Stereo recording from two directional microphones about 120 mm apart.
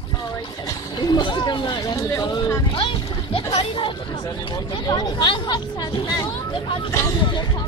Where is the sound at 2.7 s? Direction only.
45° left (ahead or behind).